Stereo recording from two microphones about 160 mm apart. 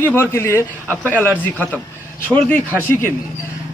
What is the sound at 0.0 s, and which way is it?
Speech, 15° left (ahead or behind).